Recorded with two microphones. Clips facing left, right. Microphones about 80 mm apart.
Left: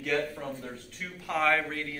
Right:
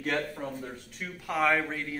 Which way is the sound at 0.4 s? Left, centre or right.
Centre.